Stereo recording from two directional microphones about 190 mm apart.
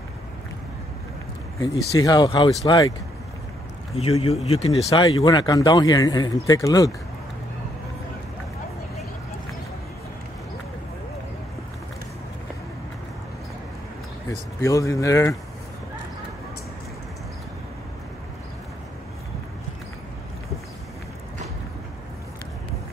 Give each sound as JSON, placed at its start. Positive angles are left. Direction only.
{"t": 2.0, "sound": "speech", "side_deg": 20}
{"t": 3.9, "sound": "speech", "side_deg": 30}
{"t": 4.8, "sound": "speech", "side_deg": 20}
{"t": 14.6, "sound": "speech", "side_deg": 15}